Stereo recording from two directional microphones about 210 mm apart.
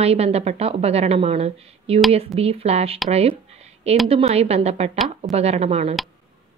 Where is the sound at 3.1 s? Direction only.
30° right (ahead or behind).